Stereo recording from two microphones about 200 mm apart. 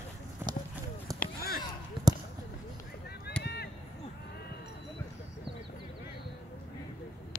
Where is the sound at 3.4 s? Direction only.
55° left (ahead or behind).